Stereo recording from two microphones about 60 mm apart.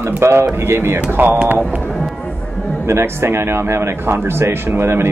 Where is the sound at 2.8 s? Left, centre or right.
Right.